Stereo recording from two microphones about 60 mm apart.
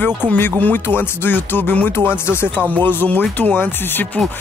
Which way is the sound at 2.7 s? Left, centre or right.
Left.